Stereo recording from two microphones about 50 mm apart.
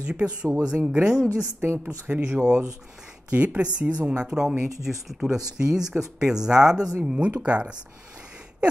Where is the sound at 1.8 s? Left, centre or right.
Right.